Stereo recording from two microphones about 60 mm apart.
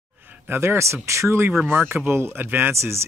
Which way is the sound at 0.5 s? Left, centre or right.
Right.